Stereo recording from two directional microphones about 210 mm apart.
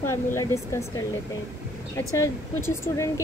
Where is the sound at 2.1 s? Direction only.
10° left (ahead or behind).